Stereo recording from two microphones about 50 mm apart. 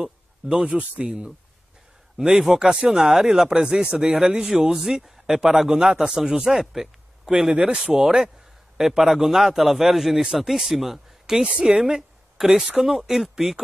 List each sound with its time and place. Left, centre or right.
0.0 s a sound: centre
0.7 s speech: right
2.1 s a man's voice: centre